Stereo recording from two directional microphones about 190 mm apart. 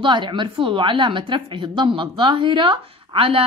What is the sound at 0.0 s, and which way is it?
A woman's voice, 25° right (ahead or behind).